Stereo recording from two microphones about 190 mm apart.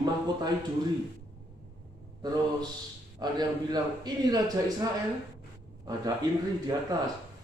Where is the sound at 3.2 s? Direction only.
20° right (ahead or behind).